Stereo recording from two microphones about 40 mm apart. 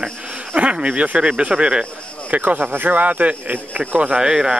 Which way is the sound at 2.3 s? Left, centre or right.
Right.